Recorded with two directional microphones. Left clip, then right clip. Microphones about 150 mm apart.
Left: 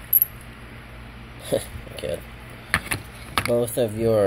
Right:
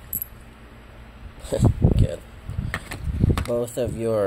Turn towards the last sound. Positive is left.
turn(degrees=0)  # may be behind; listen again after turning